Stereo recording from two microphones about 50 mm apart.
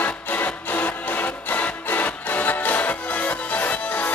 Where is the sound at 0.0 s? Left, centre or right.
Left.